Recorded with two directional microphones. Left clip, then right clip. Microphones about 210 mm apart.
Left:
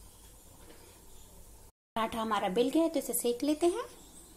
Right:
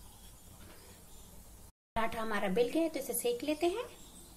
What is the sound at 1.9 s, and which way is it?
Speech, 25° left (ahead or behind).